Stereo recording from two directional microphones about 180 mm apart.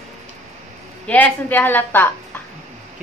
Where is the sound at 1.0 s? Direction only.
10° left (ahead or behind).